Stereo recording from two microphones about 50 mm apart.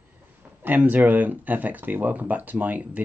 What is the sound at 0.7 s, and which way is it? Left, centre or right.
Speech, right.